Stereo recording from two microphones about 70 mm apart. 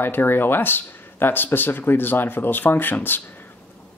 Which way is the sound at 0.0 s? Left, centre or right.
Left.